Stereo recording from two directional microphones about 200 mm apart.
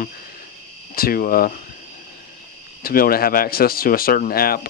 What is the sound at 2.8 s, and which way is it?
A man's voice, 45° left (ahead or behind).